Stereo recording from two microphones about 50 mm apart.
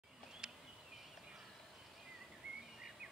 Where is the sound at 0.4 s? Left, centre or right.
Centre.